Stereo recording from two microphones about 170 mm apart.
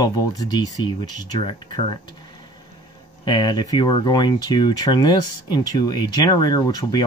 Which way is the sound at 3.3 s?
25° left (ahead or behind).